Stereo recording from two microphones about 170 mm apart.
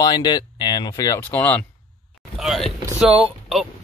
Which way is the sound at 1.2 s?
10° left (ahead or behind).